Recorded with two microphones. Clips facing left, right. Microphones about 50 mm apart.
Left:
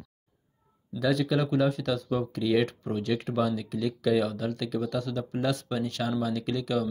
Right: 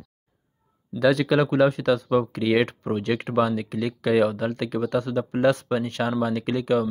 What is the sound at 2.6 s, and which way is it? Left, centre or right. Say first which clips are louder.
Speech: right 4 dB; right.